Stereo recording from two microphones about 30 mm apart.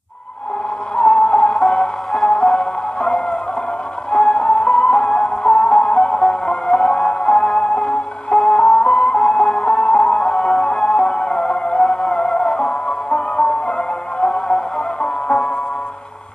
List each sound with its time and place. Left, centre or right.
0.9 s music: left